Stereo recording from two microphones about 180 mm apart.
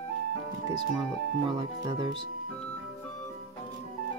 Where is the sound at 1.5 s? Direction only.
25° right (ahead or behind).